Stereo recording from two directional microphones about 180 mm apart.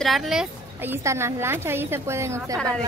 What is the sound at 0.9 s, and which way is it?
A woman's voice, 15° right (ahead or behind).